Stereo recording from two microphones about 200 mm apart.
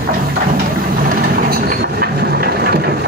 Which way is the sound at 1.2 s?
50° right (ahead or behind).